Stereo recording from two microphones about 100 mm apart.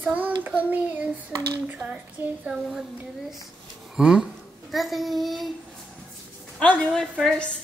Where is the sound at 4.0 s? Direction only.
5° right (ahead or behind).